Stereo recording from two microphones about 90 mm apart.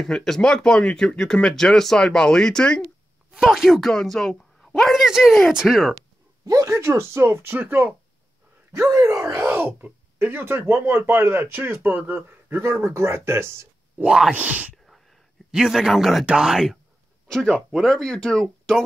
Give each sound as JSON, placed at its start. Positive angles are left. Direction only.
{"t": 0.0, "sound": "speech", "side_deg": 5}
{"t": 3.3, "sound": "a woman's voice", "side_deg": -5}
{"t": 6.4, "sound": "speech", "side_deg": -35}
{"t": 8.9, "sound": "speech", "side_deg": -35}
{"t": 14.0, "sound": "a woman's voice", "side_deg": -5}
{"t": 14.3, "sound": "speech", "side_deg": -20}
{"t": 14.9, "sound": "a sound", "side_deg": 0}
{"t": 16.3, "sound": "speech", "side_deg": -5}
{"t": 17.3, "sound": "a woman's voice", "side_deg": 5}